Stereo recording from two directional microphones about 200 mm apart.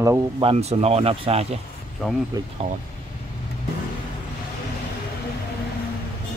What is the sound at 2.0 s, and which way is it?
Speech, centre (ahead or behind).